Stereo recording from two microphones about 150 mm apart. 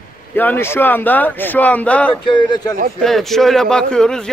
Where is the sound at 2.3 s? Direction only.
30° left (ahead or behind).